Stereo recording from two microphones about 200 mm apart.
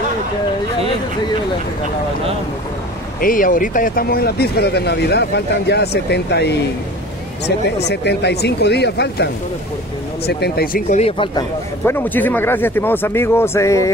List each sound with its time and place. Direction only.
3.2 s speech: 45° left (ahead or behind)
7.9 s speech: 55° left (ahead or behind); by 11.4 s 25° left (ahead or behind)
11.8 s speech: 10° left (ahead or behind)